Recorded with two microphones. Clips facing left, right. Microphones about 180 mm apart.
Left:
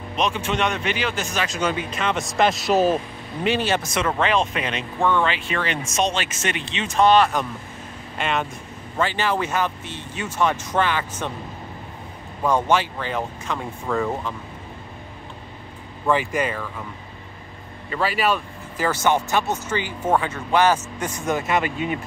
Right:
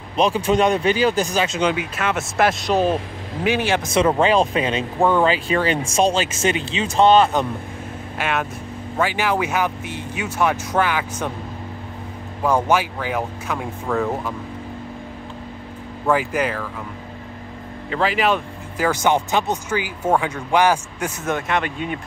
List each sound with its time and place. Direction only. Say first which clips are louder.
0.1 s speech: right 6 dB; 35° right (ahead or behind); by 3.0 s 5° left (ahead or behind)
3.4 s speech: right 2 dB; 10° right (ahead or behind)
3.9 s speech: right 8 dB; 30° right (ahead or behind)
8.2 s speech: right 1 dB; 5° right (ahead or behind)
12.4 s speech: right 1 dB; 10° right (ahead or behind)
16.1 s speech: right 2 dB; 5° right (ahead or behind)
18.0 s speech: right 2 dB; 15° right (ahead or behind)
21.3 s speech: left 1 dB; 5° left (ahead or behind)